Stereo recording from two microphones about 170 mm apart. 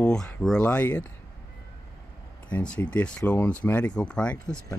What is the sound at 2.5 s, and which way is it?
Speech, 10° left (ahead or behind).